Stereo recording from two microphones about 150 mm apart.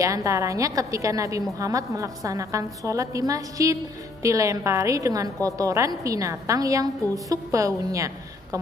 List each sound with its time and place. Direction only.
0.0 s a woman's voice: 20° right (ahead or behind)